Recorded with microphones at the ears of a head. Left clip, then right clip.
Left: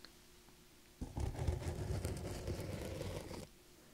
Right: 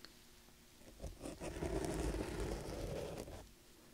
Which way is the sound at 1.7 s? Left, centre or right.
Right.